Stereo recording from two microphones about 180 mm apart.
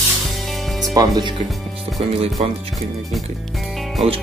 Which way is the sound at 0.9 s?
25° right (ahead or behind).